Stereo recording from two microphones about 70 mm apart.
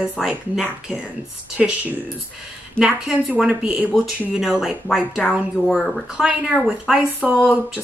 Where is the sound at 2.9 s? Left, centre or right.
Right.